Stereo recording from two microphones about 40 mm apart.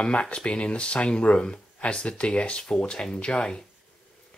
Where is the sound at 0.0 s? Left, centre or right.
Left.